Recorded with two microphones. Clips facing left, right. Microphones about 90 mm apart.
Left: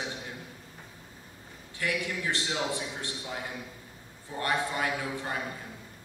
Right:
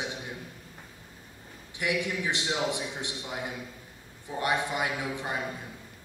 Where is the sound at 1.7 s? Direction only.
20° right (ahead or behind).